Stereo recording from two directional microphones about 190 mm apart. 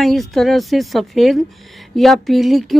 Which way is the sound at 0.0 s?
Centre (ahead or behind).